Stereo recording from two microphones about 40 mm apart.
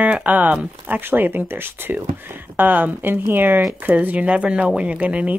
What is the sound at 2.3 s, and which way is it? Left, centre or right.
Speech, right.